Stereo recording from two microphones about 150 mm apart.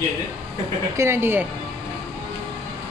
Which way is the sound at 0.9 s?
15° right (ahead or behind).